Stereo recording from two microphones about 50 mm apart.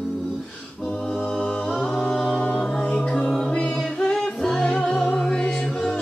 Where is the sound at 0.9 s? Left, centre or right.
Left.